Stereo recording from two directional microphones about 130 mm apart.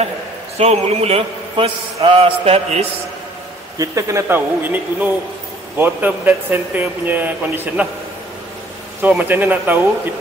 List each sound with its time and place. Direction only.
0.6 s a man's voice: 55° right (ahead or behind)
3.7 s a man's voice: 25° right (ahead or behind)
9.2 s speech: 15° right (ahead or behind)